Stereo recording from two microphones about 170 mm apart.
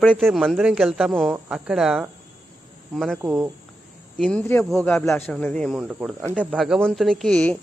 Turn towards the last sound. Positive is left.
turn(degrees=5)  # may be behind; listen again after turning